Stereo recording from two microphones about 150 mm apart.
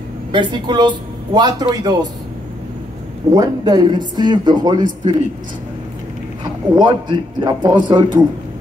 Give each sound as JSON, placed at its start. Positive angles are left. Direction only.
{"t": 0.3, "sound": "speech", "side_deg": -30}
{"t": 3.3, "sound": "speech", "side_deg": -25}
{"t": 6.7, "sound": "a man's voice", "side_deg": -30}